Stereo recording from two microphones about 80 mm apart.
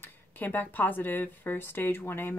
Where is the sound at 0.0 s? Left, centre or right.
Left.